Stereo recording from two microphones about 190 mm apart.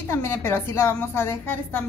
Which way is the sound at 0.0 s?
15° left (ahead or behind).